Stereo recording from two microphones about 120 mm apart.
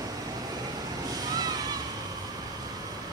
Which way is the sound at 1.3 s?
35° right (ahead or behind).